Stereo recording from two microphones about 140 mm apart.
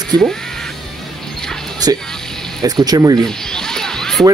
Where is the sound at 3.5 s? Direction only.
5° left (ahead or behind).